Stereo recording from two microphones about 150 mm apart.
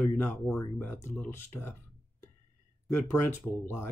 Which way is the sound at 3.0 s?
15° left (ahead or behind).